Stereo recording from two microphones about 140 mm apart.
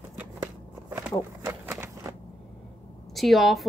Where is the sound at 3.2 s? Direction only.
Centre (ahead or behind).